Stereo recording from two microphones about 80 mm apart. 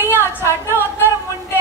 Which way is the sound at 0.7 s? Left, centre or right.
Right.